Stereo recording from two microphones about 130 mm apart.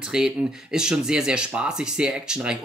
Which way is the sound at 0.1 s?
5° right (ahead or behind).